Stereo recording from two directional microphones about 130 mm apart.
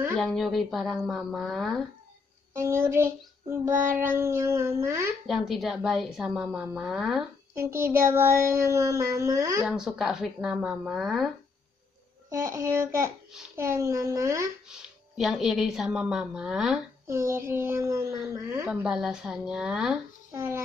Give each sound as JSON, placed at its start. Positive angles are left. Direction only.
{"t": 0.1, "sound": "a woman's voice", "side_deg": 0}
{"t": 2.5, "sound": "a child's voice", "side_deg": -20}
{"t": 3.6, "sound": "child singing", "side_deg": -20}
{"t": 4.2, "sound": "a child's voice", "side_deg": -20}
{"t": 5.2, "sound": "a woman's voice", "side_deg": 0}
{"t": 7.5, "sound": "a child's voice", "side_deg": -20}
{"t": 9.6, "sound": "a woman's voice", "side_deg": -5}
{"t": 12.3, "sound": "a child's voice", "side_deg": -20}
{"t": 14.7, "sound": "a woman's voice", "side_deg": -5}
{"t": 17.1, "sound": "a child's voice", "side_deg": -20}
{"t": 18.7, "sound": "a woman's voice", "side_deg": -10}
{"t": 20.3, "sound": "a child's voice", "side_deg": -20}